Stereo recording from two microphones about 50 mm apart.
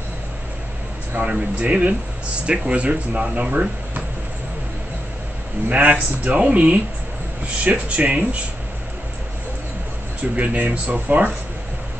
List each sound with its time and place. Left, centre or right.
1.1 s speech: right
5.7 s a man's voice: right
10.3 s speech: right